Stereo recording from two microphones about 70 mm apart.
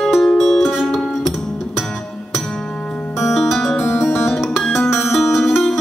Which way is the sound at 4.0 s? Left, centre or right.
Left.